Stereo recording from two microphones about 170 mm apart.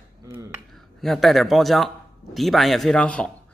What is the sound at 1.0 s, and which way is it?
Speech, centre (ahead or behind).